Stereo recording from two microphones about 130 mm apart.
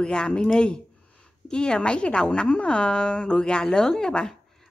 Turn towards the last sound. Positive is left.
turn(degrees=5)  # may be behind; listen again after turning